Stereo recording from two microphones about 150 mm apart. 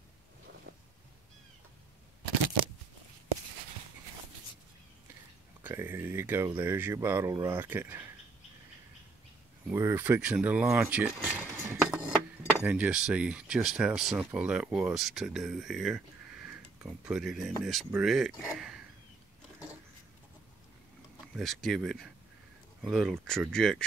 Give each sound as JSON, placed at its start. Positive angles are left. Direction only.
{"t": 5.6, "sound": "speech", "side_deg": -15}
{"t": 9.7, "sound": "speech", "side_deg": -15}
{"t": 17.1, "sound": "speech", "side_deg": 0}
{"t": 21.4, "sound": "speech", "side_deg": 0}